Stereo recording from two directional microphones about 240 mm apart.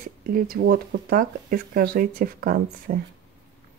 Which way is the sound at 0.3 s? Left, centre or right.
Right.